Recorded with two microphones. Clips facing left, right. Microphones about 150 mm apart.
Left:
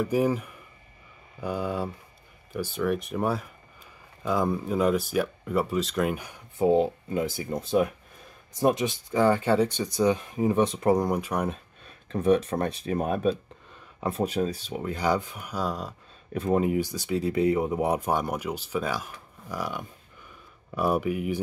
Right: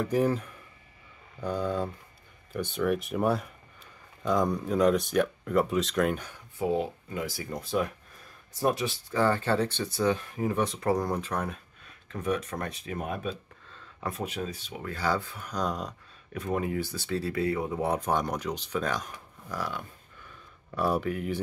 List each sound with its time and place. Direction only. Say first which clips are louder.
0.0 s speech: left 2 dB; 10° left (ahead or behind)
6.6 s speech: left 7 dB; 25° left (ahead or behind)
12.1 s speech: left 8 dB; 30° left (ahead or behind)
13.7 s a sound: left 5 dB; 15° left (ahead or behind)
14.1 s speech: left 10 dB; 35° left (ahead or behind)
14.9 s speech: left 3 dB; 15° left (ahead or behind)
16.3 s speech: left 6 dB; 25° left (ahead or behind)